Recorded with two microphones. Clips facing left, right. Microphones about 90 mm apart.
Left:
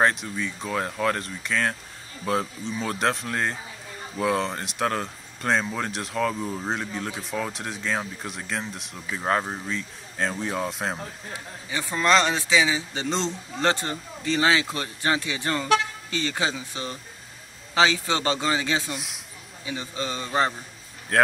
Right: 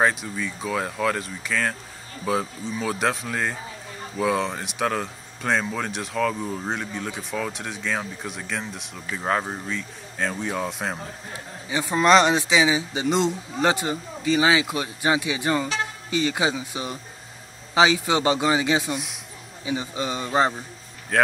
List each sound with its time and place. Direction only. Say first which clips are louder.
0.0 s speech: even; centre (ahead or behind)
11.7 s a man's voice: right 4 dB; 20° right (ahead or behind)
18.9 s speech: right 5 dB; centre (ahead or behind)
19.6 s a man's voice: right 4 dB; 20° right (ahead or behind)
21.1 s speech: even; centre (ahead or behind)